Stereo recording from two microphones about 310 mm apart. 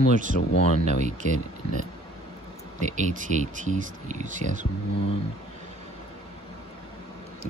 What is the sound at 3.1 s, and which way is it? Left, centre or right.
Speech, right.